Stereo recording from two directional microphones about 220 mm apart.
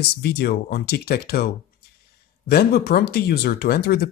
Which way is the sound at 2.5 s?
45° left (ahead or behind).